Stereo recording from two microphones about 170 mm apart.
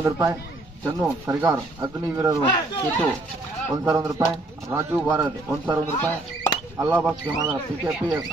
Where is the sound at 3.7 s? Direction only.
20° right (ahead or behind).